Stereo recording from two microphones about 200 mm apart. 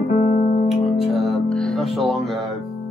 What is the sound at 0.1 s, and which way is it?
Music, 45° left (ahead or behind).